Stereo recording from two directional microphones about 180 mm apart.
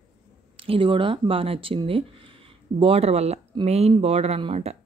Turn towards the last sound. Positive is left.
turn(degrees=-35)  # may be behind; listen again after turning